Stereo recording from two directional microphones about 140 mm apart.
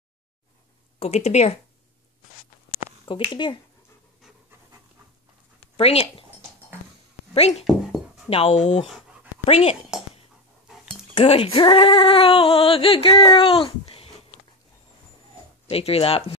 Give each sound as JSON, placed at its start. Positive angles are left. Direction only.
{"t": 0.9, "sound": "speech", "side_deg": 50}
{"t": 3.1, "sound": "speech", "side_deg": 35}
{"t": 5.8, "sound": "speech", "side_deg": 45}
{"t": 7.3, "sound": "speech", "side_deg": 50}
{"t": 7.6, "sound": "dog", "side_deg": 0}
{"t": 8.3, "sound": "speech", "side_deg": 45}
{"t": 10.7, "sound": "dog", "side_deg": -5}
{"t": 11.1, "sound": "speech", "side_deg": 40}
{"t": 15.7, "sound": "speech", "side_deg": 45}